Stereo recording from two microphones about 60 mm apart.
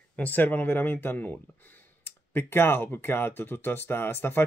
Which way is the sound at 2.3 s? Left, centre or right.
Left.